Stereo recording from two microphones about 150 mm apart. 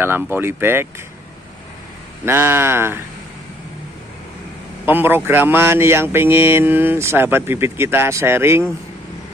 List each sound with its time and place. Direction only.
0.0 s speech: 15° right (ahead or behind)
2.2 s speech: 15° right (ahead or behind)
4.8 s speech: 15° right (ahead or behind)